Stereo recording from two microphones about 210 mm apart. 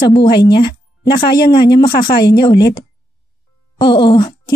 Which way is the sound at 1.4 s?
45° left (ahead or behind).